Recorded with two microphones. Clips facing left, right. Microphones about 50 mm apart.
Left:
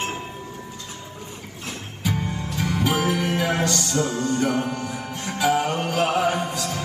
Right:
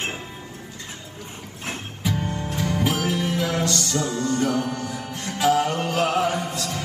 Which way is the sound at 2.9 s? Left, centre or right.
Left.